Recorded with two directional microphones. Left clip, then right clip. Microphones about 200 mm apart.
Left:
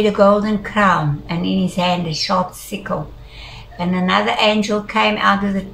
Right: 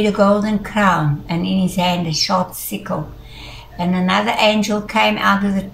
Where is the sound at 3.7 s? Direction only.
5° right (ahead or behind).